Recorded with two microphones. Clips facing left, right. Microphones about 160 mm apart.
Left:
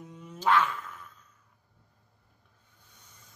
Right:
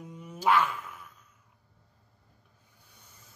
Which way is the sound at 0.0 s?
10° right (ahead or behind).